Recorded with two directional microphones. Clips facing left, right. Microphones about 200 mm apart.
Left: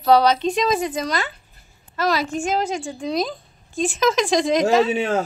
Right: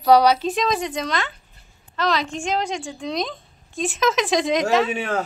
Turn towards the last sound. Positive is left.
turn(degrees=20)  # may be behind; listen again after turning